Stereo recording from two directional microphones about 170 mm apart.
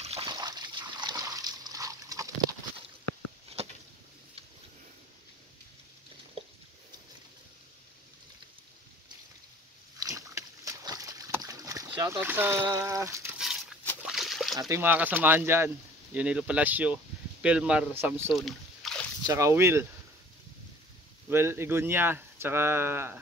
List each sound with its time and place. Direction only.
0.3 s splash: 25° right (ahead or behind)
3.6 s a sound: 35° right (ahead or behind)
9.9 s splash: 20° right (ahead or behind)
14.0 s a sound: centre (ahead or behind)
14.6 s speech: 15° right (ahead or behind)
18.3 s boat: centre (ahead or behind)
19.2 s speech: 20° right (ahead or behind)
21.3 s speech: 15° right (ahead or behind)